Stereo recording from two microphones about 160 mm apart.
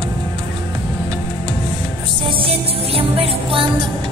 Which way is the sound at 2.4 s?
35° right (ahead or behind).